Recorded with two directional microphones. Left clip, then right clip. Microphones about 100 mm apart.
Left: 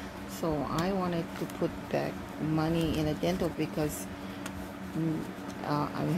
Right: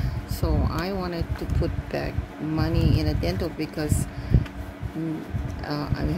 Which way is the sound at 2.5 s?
25° right (ahead or behind).